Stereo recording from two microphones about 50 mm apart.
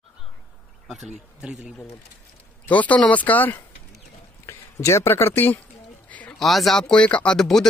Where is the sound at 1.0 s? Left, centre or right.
Centre.